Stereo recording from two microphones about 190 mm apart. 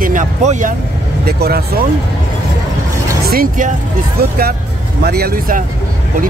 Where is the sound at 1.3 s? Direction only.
55° right (ahead or behind).